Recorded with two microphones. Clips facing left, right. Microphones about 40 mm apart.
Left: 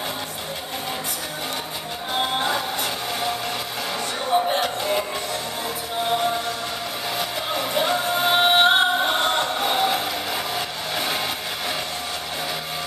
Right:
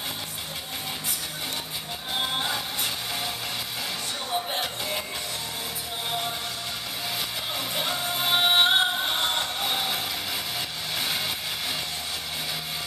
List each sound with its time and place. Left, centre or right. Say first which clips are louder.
2.1 s music: left 5 dB; centre
4.3 s music: left 10 dB; centre
7.2 s music: left 8 dB; centre